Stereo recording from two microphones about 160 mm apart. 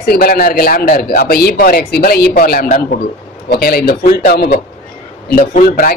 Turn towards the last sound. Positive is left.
turn(degrees=60)  # may be behind; listen again after turning